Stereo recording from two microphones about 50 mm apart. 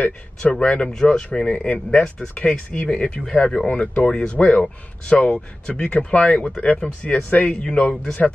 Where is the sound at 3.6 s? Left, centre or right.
Left.